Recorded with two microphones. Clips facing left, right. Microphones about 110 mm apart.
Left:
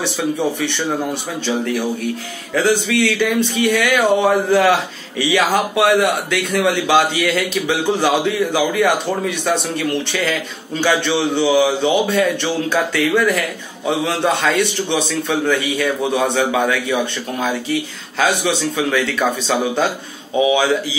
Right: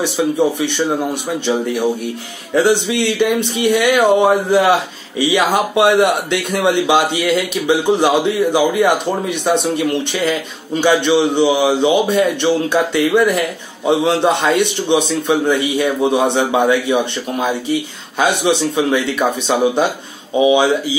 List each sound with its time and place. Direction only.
0.0 s speech: 15° right (ahead or behind)
2.5 s a man's voice: 25° right (ahead or behind)